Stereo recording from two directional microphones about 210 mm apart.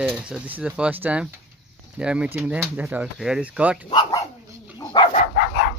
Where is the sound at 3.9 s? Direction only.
20° left (ahead or behind).